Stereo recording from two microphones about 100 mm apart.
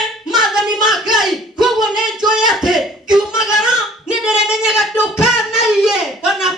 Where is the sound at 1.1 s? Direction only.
5° right (ahead or behind).